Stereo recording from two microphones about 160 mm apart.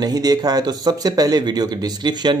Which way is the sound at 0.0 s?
25° right (ahead or behind).